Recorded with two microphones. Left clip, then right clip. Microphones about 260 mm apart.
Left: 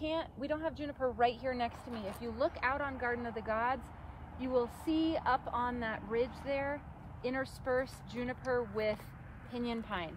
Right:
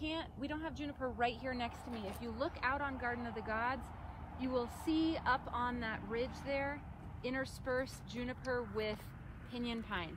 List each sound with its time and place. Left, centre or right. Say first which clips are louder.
0.0 s speech: left 5 dB; left
4.8 s speech: left 2 dB; left